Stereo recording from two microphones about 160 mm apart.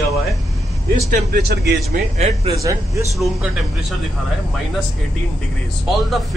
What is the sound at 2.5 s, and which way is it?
Speech, 20° right (ahead or behind).